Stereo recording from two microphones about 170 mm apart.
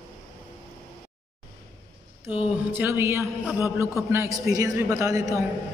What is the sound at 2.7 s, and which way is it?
A man's voice, 15° right (ahead or behind).